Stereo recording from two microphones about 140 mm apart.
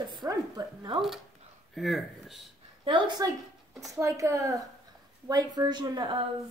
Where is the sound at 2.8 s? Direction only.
35° right (ahead or behind).